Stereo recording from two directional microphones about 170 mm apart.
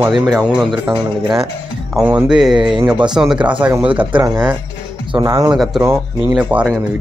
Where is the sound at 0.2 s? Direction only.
5° right (ahead or behind).